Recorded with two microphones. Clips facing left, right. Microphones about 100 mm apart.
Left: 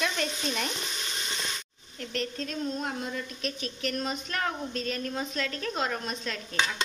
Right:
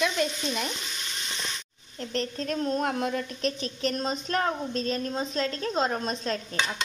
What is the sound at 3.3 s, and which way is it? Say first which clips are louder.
A woman's voice: right 5 dB; 35° right (ahead or behind).